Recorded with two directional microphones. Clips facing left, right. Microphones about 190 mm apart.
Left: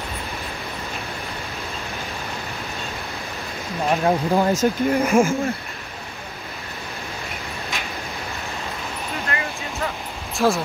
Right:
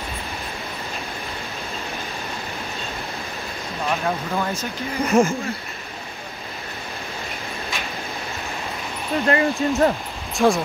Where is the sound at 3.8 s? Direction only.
35° left (ahead or behind).